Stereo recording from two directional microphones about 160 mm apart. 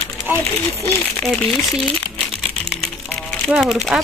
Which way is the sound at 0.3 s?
10° right (ahead or behind).